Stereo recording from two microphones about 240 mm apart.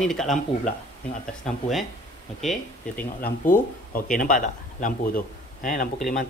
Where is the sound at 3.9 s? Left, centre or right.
Left.